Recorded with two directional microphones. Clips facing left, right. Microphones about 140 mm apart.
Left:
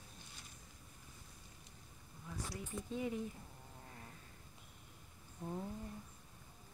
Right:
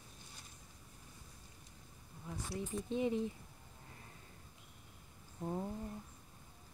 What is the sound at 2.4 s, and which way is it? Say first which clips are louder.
Speech: right 6 dB; 25° right (ahead or behind).